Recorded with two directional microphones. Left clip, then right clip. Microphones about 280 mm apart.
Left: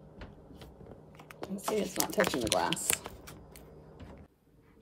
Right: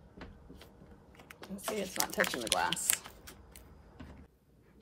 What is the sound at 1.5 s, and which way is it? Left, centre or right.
Speech, centre.